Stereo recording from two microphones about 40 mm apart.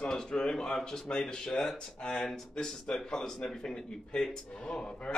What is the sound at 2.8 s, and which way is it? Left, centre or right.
Speech, centre.